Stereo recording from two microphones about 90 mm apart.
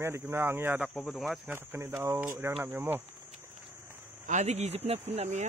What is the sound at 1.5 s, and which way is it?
Speech, 25° right (ahead or behind).